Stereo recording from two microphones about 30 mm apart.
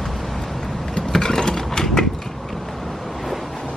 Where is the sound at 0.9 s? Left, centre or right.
Centre.